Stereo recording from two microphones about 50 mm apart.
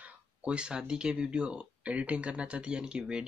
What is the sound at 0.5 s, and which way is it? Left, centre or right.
Speech, centre.